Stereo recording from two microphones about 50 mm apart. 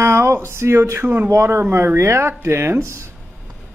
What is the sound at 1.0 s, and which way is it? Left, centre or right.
Speech, right.